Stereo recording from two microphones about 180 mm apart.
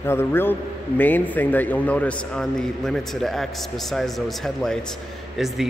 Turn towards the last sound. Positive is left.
turn(degrees=0)  # may be behind; listen again after turning